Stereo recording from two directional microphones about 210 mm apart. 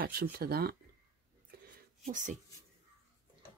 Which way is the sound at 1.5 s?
45° right (ahead or behind).